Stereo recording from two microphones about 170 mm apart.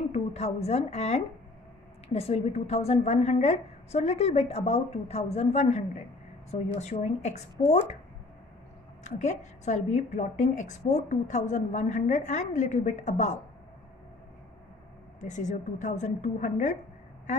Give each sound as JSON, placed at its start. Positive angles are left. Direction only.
{"t": 0.1, "sound": "a woman's voice", "side_deg": 40}
{"t": 9.0, "sound": "a woman's voice", "side_deg": 45}
{"t": 15.1, "sound": "a woman's voice", "side_deg": 45}